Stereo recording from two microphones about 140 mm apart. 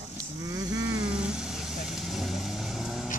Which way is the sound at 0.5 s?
25° right (ahead or behind).